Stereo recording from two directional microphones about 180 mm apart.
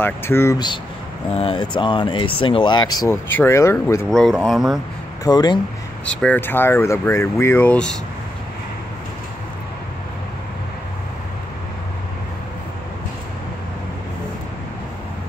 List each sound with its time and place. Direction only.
0.0 s speech: 10° left (ahead or behind)
1.3 s speech: 30° left (ahead or behind)
4.1 s speech: centre (ahead or behind)
5.2 s speech: 25° left (ahead or behind)
6.0 s speech: 10° left (ahead or behind)